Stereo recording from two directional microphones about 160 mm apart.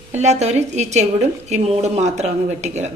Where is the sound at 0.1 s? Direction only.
45° right (ahead or behind).